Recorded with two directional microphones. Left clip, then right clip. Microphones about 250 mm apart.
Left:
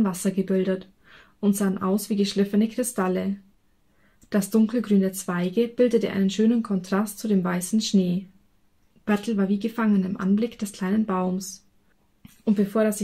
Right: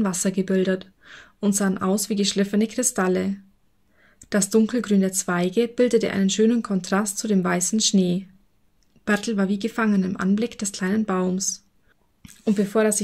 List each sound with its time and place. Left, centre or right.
0.0 s speech: right
4.3 s a woman's voice: right